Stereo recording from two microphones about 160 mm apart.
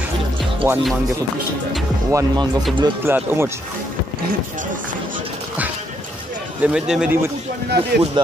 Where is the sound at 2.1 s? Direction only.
20° right (ahead or behind).